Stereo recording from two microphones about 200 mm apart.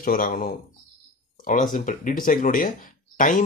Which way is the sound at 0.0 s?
45° left (ahead or behind).